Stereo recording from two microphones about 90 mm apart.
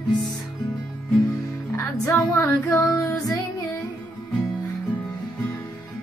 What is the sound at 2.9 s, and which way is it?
Music, 40° left (ahead or behind).